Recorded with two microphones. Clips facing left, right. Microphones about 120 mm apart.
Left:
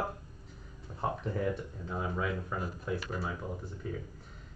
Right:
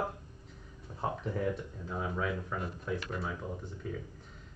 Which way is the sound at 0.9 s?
Centre (ahead or behind).